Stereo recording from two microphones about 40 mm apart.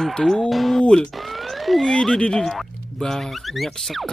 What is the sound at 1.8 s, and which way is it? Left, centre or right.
Speech, centre.